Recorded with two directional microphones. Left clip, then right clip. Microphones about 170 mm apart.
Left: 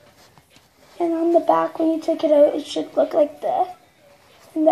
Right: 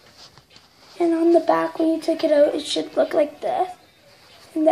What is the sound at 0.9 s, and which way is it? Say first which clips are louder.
Speech: right 1 dB; 10° right (ahead or behind).